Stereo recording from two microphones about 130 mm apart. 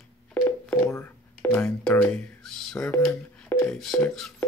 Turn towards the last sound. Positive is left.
turn(degrees=5)  # may be behind; listen again after turning